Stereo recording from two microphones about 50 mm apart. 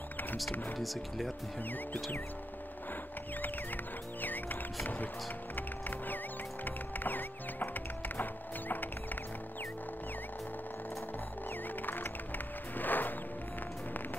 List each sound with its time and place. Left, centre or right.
0.7 s speech: centre
4.2 s music: left
5.6 s music: left
11.8 s music: left